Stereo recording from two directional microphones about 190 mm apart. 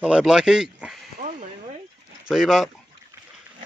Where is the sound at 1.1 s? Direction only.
40° right (ahead or behind).